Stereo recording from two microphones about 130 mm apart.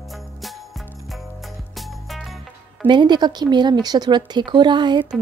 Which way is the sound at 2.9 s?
35° right (ahead or behind).